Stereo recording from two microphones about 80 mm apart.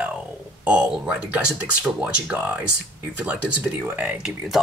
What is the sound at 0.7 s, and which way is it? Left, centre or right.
Speech, centre.